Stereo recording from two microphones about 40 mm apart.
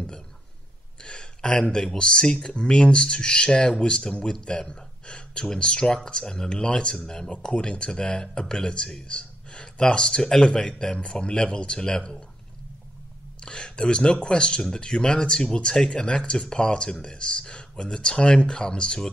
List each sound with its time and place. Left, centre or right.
1.0 s speech: left
13.4 s speech: left